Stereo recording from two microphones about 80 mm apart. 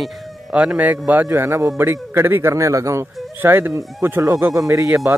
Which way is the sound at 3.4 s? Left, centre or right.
Right.